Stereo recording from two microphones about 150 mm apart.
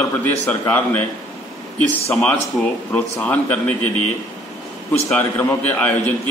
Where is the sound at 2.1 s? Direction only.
5° left (ahead or behind).